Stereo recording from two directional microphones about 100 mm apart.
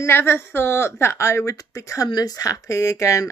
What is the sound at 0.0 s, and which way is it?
A woman's voice, 25° left (ahead or behind).